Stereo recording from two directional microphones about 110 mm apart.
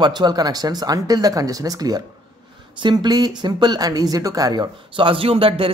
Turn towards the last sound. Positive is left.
turn(degrees=-60)  # may be behind; listen again after turning